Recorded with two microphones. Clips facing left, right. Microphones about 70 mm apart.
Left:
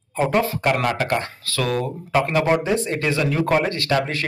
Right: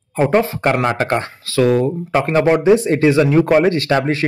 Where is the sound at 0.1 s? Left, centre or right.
Right.